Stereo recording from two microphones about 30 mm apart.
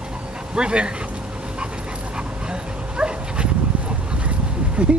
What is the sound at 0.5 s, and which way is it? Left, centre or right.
Speech, right.